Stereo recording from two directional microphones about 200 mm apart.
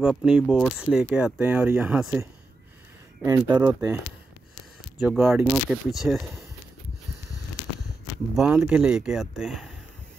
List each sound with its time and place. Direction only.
0.0 s speech: centre (ahead or behind)
3.2 s speech: 15° right (ahead or behind)
5.0 s speech: 10° right (ahead or behind)
8.4 s speech: 5° right (ahead or behind)